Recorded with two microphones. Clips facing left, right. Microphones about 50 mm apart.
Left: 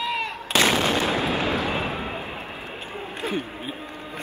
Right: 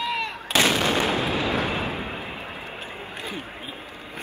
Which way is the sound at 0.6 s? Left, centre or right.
Left.